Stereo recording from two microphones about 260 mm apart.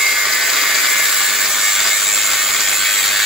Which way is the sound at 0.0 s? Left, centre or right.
Centre.